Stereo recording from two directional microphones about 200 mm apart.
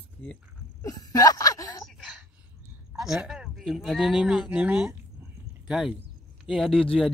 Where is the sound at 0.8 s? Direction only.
20° left (ahead or behind).